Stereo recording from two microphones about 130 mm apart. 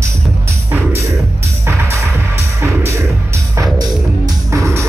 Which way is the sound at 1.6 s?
20° right (ahead or behind).